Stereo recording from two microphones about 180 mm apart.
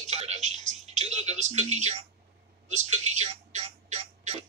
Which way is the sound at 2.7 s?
40° right (ahead or behind).